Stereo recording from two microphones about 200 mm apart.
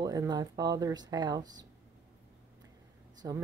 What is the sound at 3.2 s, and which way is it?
Speech, 15° right (ahead or behind).